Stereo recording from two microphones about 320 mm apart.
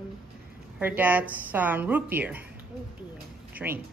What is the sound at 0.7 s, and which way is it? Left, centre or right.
A woman's voice, centre.